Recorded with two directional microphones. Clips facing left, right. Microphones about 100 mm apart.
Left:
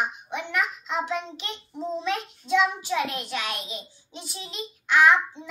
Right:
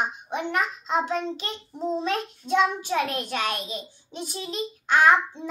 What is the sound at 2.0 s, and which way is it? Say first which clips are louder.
Child singing: right 2 dB; 45° right (ahead or behind).